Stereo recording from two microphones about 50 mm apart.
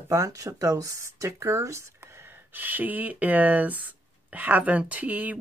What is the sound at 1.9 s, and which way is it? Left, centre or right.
Speech, right.